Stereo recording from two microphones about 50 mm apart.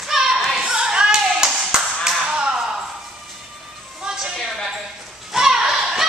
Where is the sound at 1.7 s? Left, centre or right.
Centre.